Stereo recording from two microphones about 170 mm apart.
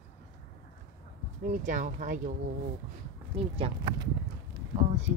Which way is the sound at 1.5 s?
45° right (ahead or behind).